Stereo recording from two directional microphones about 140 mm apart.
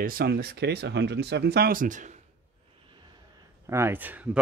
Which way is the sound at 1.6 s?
80° right.